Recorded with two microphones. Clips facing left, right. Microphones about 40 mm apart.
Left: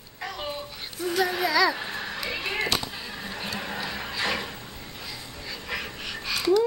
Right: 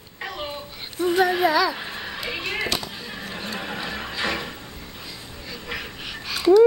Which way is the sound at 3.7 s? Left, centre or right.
Centre.